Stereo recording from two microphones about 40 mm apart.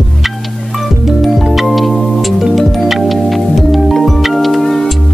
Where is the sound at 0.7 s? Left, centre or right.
Centre.